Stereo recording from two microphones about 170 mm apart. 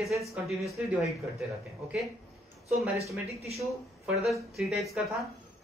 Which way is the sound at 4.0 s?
Centre (ahead or behind).